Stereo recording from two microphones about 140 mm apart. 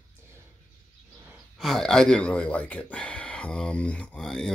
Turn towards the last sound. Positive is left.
turn(degrees=5)  # may be behind; listen again after turning